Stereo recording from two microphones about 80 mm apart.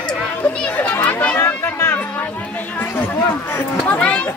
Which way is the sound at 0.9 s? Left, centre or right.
Left.